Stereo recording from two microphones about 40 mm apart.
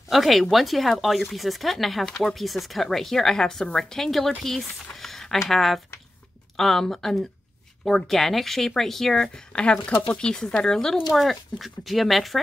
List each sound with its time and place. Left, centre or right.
0.1 s speech: centre
2.0 s a woman's voice: centre
2.3 s a woman's voice: centre
4.9 s a sound: centre
6.5 s a woman's voice: centre
9.5 s a woman's voice: left
11.1 s speech: centre